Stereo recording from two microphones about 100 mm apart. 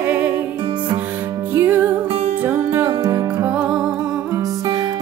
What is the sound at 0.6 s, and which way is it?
Music, 55° right (ahead or behind).